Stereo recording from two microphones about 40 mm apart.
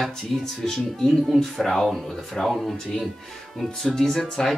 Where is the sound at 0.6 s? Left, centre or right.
Centre.